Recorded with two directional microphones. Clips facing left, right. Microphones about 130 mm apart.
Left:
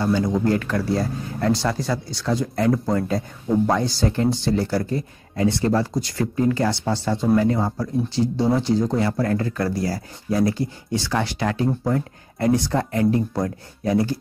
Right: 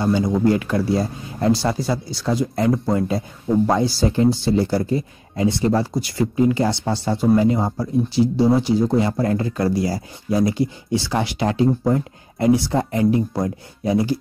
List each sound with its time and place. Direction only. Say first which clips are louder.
0.0 s speech: right 2 dB; 15° right (ahead or behind)